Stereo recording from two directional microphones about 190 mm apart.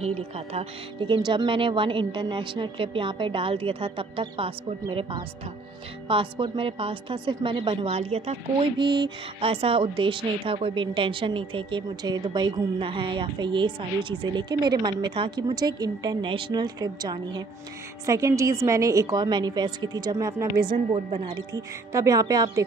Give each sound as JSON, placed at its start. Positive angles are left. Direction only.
{"t": 0.0, "sound": "a woman's voice", "side_deg": -35}
{"t": 20.9, "sound": "speech", "side_deg": -30}
{"t": 21.5, "sound": "a woman's voice", "side_deg": -15}